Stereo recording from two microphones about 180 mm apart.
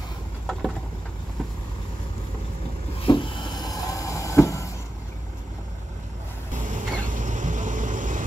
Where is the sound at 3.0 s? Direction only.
25° left (ahead or behind).